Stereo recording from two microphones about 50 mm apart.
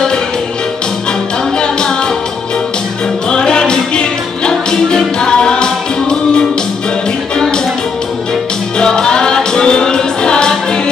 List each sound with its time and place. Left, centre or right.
3.3 s music: centre
8.7 s music: centre